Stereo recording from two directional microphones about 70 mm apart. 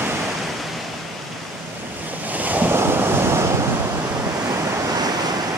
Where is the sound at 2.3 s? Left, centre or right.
Right.